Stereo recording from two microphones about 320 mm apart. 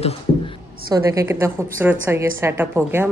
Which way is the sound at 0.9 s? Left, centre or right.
Centre.